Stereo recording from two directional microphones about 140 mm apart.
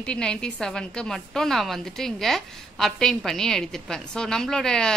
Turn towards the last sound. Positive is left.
turn(degrees=5)  # may be behind; listen again after turning